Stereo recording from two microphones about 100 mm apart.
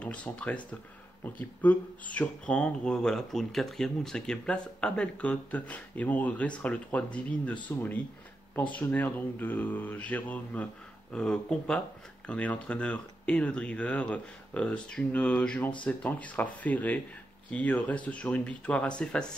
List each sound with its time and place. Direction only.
0.0 s speech: 10° left (ahead or behind)
8.5 s speech: 15° left (ahead or behind)